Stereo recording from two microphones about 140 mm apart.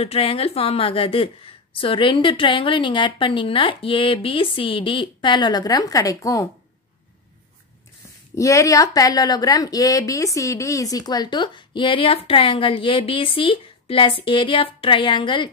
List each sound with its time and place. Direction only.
0.0 s speech: 45° left (ahead or behind); by 6.4 s 25° left (ahead or behind)
8.4 s speech: 20° left (ahead or behind)